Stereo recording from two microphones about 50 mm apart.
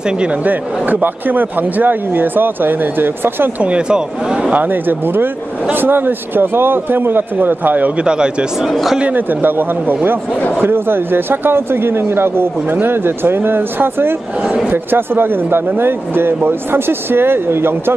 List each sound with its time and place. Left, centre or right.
0.2 s speech: right
3.5 s speech: right
4.6 s speech: right
8.0 s speech: centre
9.1 s speech: right